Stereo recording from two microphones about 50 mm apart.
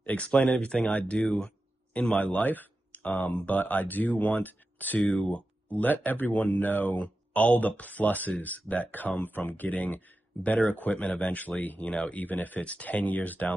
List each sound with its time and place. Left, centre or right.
0.0 s speech: left